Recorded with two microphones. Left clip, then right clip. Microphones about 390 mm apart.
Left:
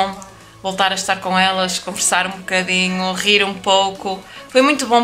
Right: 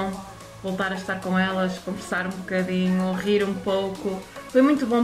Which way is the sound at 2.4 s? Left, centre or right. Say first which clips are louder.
Left 9 dB; left.